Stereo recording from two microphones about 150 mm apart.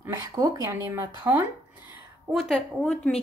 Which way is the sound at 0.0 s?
25° right (ahead or behind).